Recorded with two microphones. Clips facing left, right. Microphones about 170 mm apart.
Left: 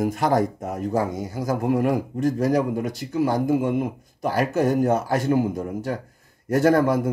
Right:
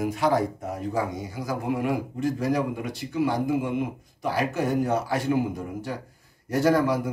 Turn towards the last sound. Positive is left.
turn(degrees=50)  # may be behind; listen again after turning